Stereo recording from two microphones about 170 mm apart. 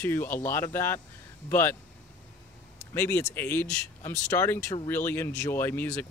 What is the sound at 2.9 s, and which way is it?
Speech, 10° left (ahead or behind).